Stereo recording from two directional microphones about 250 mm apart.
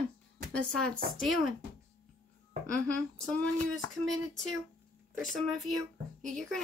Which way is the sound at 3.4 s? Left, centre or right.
Centre.